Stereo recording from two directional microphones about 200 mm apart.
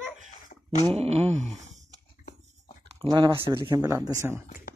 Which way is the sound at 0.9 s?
30° right (ahead or behind).